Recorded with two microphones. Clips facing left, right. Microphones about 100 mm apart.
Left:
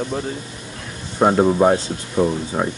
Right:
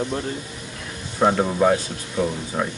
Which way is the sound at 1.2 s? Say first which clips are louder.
Left 4 dB; 20° left (ahead or behind).